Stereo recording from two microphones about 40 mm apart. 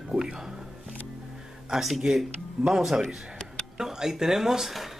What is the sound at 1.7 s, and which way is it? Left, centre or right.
Speech, centre.